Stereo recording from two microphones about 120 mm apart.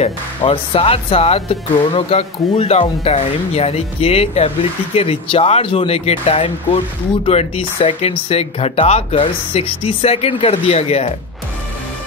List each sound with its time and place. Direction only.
0.0 s speech: 55° left (ahead or behind)